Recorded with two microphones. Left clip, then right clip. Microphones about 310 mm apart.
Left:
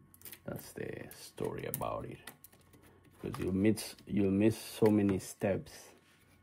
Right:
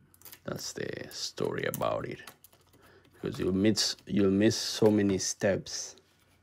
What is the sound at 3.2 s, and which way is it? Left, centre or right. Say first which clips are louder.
Speech: right 4 dB; centre.